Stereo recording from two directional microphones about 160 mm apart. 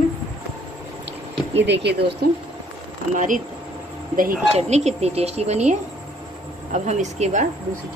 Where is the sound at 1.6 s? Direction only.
90° right.